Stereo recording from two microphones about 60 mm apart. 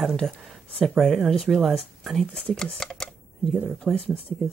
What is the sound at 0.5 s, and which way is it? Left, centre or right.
Speech, centre.